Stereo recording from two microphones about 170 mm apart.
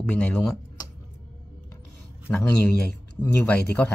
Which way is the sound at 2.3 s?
20° left (ahead or behind).